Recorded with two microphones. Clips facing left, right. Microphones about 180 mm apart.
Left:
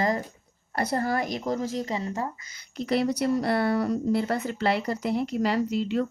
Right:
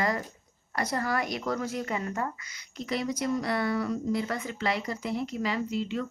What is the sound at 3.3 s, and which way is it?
Speech, 35° left (ahead or behind).